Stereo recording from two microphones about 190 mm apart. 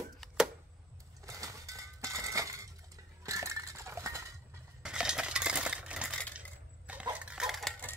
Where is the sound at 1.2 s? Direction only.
15° right (ahead or behind).